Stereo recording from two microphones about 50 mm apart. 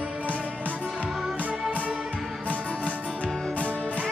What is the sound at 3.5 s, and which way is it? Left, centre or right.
Music, left.